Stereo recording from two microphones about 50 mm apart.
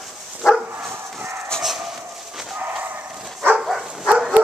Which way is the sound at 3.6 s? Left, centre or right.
Centre.